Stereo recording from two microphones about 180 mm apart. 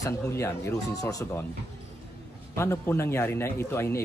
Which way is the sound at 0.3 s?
15° left (ahead or behind).